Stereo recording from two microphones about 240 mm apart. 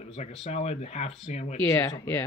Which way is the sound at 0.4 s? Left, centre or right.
Left.